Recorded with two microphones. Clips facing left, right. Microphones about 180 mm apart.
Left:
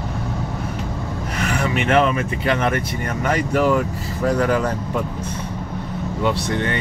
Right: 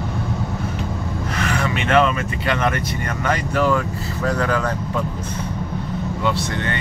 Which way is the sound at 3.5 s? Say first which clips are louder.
Left 2 dB; 15° left (ahead or behind).